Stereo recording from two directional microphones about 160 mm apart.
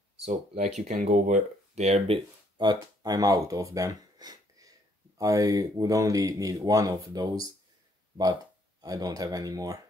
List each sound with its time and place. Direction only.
0.2 s speech: 45° right (ahead or behind)
2.5 s speech: 25° right (ahead or behind)
8.8 s speech: 25° right (ahead or behind)